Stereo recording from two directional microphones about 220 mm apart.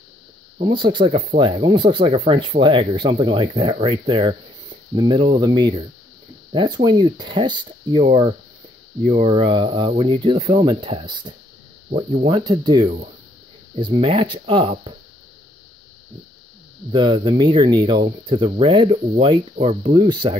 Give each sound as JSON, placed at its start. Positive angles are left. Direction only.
{"t": 0.6, "sound": "speech", "side_deg": -20}
{"t": 9.0, "sound": "speech", "side_deg": -25}
{"t": 16.9, "sound": "speech", "side_deg": -20}